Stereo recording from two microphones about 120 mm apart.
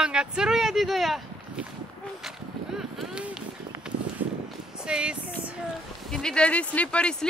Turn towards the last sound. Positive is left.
turn(degrees=10)  # may be behind; listen again after turning